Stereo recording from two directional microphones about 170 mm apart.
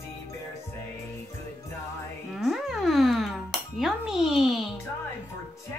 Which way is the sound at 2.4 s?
Centre (ahead or behind).